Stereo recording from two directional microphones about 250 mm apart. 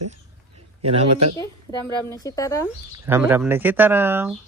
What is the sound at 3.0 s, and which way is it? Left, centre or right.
Speech, centre.